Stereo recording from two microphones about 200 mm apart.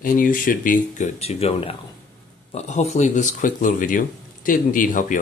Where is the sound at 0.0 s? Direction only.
45° left (ahead or behind).